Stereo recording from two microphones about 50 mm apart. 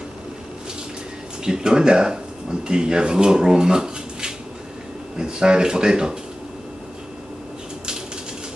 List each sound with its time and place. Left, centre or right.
1.4 s speech: centre